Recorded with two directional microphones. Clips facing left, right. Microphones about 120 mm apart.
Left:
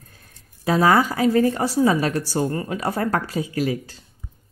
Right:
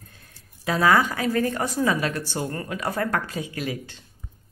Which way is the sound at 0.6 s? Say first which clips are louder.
Left 3 dB; 35° left (ahead or behind).